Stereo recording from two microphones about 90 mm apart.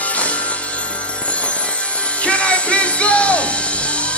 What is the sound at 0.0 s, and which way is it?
Music, 15° left (ahead or behind).